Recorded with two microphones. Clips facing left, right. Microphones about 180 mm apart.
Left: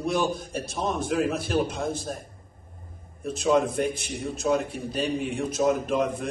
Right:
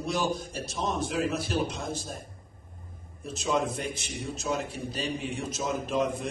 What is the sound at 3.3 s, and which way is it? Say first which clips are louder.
A man's voice: left 6 dB; 55° left (ahead or behind).